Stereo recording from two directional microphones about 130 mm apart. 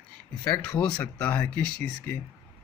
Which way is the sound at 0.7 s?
10° left (ahead or behind).